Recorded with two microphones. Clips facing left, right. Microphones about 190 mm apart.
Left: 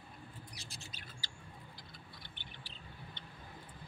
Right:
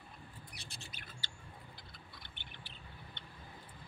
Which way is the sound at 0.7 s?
65° right (ahead or behind).